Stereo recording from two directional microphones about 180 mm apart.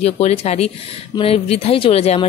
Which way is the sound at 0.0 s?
35° left (ahead or behind).